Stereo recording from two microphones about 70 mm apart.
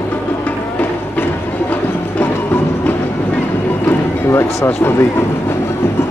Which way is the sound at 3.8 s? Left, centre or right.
Left.